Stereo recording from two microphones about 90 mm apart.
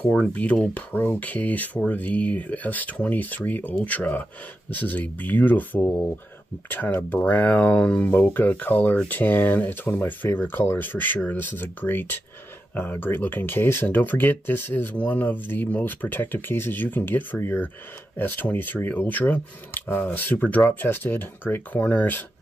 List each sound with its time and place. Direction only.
0.0 s speech: 10° left (ahead or behind)